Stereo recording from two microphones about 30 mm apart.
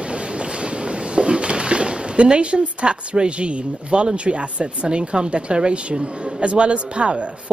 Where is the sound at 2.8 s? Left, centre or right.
Right.